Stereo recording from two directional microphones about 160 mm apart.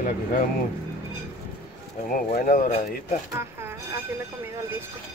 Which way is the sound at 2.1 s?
60° left (ahead or behind).